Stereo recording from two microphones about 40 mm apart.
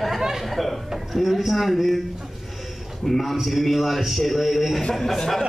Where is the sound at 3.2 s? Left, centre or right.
Centre.